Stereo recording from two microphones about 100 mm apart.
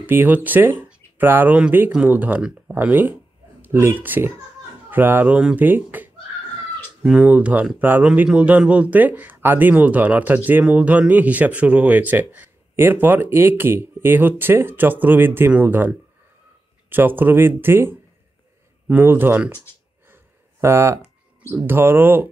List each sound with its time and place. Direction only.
0.0 s speech: 20° right (ahead or behind)
20.6 s speech: 25° right (ahead or behind)